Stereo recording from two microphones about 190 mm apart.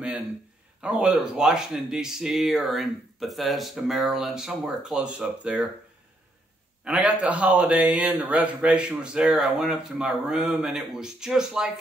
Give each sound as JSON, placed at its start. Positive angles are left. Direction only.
{"t": 0.7, "sound": "speech", "side_deg": -5}
{"t": 6.8, "sound": "speech", "side_deg": -5}